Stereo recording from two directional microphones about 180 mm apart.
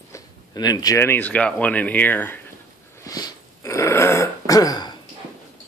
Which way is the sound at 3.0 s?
20° left (ahead or behind).